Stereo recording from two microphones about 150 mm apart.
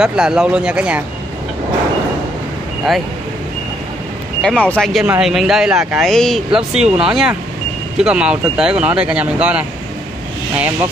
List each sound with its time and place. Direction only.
0.0 s speech: 5° right (ahead or behind)
4.4 s speech: 5° left (ahead or behind)